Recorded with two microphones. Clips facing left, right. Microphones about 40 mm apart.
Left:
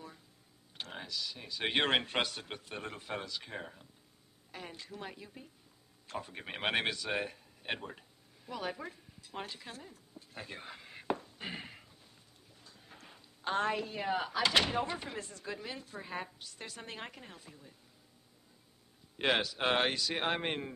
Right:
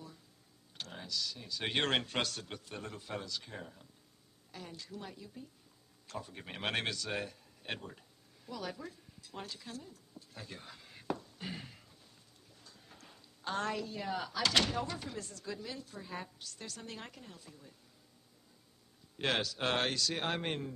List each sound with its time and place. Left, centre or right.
0.7 s computer keyboard: left
1.4 s speech: left
4.5 s a woman's voice: left
8.5 s a sound: left
12.5 s a woman's voice: centre
19.2 s speech: centre